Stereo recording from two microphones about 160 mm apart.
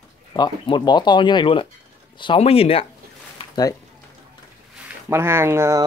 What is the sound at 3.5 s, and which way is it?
Speech, 25° left (ahead or behind).